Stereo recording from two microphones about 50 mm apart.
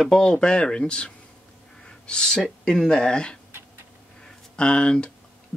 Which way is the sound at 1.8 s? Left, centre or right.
Centre.